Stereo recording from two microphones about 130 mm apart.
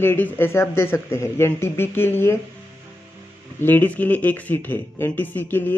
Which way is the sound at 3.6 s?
15° left (ahead or behind).